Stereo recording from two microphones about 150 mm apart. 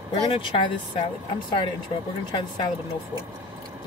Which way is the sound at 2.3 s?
30° left (ahead or behind).